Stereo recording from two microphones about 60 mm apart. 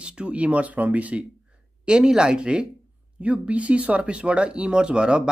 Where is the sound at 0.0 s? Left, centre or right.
Centre.